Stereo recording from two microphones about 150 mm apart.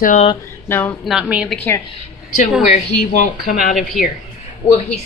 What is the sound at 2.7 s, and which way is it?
Speech, 60° left (ahead or behind).